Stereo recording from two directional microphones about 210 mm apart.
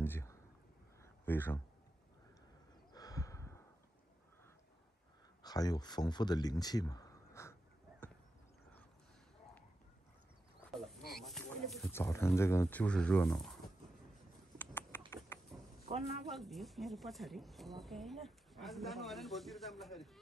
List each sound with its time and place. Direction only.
0.0 s a sound: 10° left (ahead or behind)
2.9 s sigh: 15° left (ahead or behind)
5.4 s speech: 20° left (ahead or behind)
11.1 s a sound: centre (ahead or behind)
11.8 s speech: 10° left (ahead or behind)
14.6 s typing: 10° left (ahead or behind)
15.9 s speech: 30° right (ahead or behind)
16.3 s a woman's voice: centre (ahead or behind)